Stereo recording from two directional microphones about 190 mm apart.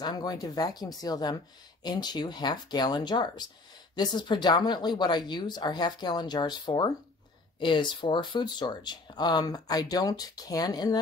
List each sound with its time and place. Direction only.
0.0 s speech: 20° left (ahead or behind)